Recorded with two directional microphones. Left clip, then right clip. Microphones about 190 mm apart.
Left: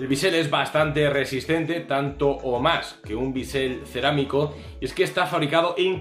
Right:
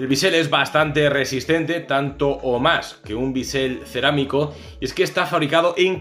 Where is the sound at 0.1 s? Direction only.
25° right (ahead or behind).